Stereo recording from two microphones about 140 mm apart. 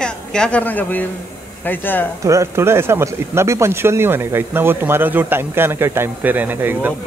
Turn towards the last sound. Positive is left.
turn(degrees=-15)  # may be behind; listen again after turning